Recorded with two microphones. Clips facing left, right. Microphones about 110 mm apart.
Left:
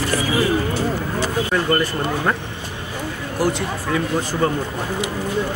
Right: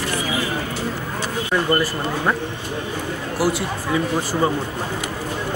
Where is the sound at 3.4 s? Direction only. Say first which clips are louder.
Even; 5° right (ahead or behind).